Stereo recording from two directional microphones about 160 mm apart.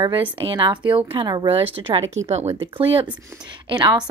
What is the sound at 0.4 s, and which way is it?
Speech, 30° right (ahead or behind).